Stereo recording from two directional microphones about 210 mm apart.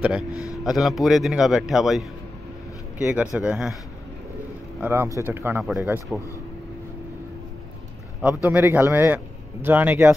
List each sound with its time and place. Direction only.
0.3 s speech: 15° left (ahead or behind)
0.7 s a man's voice: centre (ahead or behind)
4.7 s speech: 10° right (ahead or behind)
8.5 s speech: 10° right (ahead or behind)